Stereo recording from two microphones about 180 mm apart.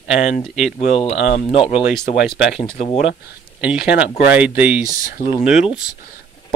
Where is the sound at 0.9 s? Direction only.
35° left (ahead or behind).